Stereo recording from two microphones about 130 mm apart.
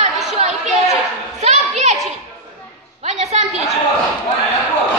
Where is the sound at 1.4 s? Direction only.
60° right (ahead or behind).